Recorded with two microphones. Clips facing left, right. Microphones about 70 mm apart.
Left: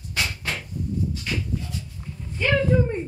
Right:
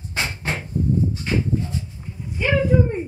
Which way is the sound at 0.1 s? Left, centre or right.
Right.